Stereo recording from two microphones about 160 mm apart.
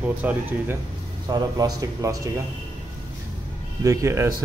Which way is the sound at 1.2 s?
25° right (ahead or behind).